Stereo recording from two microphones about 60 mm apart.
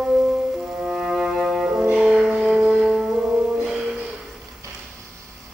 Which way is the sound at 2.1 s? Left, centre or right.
Centre.